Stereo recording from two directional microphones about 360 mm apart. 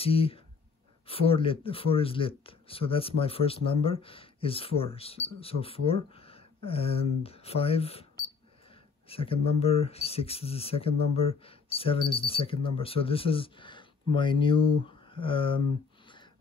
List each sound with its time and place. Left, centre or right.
0.0 s speech: centre
9.1 s speech: centre